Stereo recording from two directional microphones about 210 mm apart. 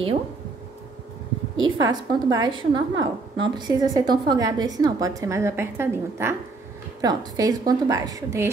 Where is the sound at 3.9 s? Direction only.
20° right (ahead or behind).